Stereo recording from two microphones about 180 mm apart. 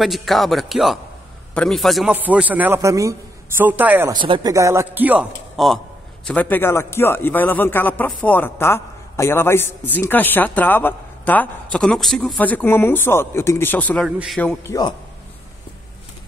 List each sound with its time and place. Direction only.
0.0 s a man's voice: centre (ahead or behind)
4.1 s a man's voice: 25° right (ahead or behind); by 5.8 s 5° right (ahead or behind)
6.2 s a man's voice: 5° left (ahead or behind)
14.0 s speech: 5° right (ahead or behind)
14.7 s a man's voice: 25° left (ahead or behind)